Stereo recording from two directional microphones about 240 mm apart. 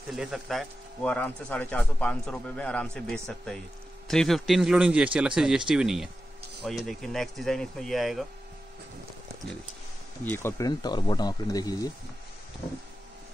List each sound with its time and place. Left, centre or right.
0.1 s speech: centre
10.2 s speech: centre